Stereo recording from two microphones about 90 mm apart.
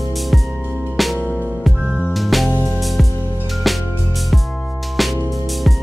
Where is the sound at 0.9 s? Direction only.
Centre (ahead or behind).